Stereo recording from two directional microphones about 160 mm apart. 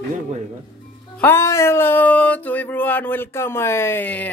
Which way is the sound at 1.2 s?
15° left (ahead or behind).